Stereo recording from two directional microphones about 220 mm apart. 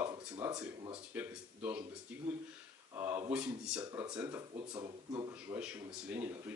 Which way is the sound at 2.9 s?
10° right (ahead or behind).